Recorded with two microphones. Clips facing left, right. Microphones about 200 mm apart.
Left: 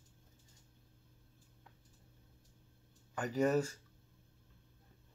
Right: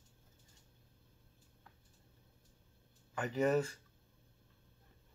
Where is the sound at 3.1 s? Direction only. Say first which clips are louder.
Even; centre (ahead or behind).